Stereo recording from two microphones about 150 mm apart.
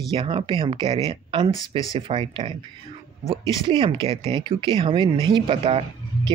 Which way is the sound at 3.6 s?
35° right (ahead or behind).